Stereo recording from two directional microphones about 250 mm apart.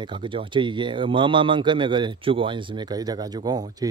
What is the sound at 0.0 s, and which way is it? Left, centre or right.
Speech, centre.